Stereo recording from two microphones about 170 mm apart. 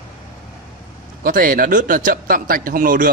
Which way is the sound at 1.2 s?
55° right (ahead or behind).